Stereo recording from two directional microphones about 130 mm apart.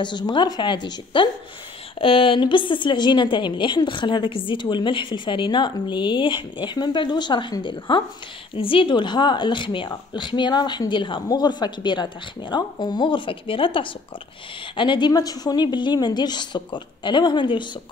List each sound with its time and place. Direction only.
0.0 s a woman's voice: 35° left (ahead or behind)